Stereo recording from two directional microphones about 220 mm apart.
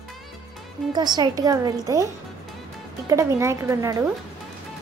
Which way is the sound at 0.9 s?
20° right (ahead or behind).